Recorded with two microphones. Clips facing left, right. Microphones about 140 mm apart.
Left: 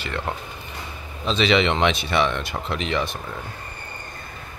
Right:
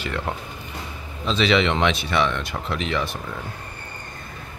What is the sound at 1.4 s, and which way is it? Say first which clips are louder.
Speech: even; centre (ahead or behind).